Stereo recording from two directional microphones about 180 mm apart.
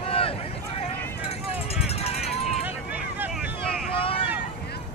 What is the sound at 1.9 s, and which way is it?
Run, 35° left (ahead or behind).